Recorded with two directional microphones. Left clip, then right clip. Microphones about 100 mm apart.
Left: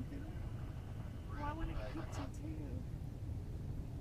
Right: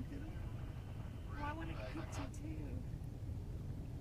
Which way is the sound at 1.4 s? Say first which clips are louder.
Left 1 dB; 20° right (ahead or behind).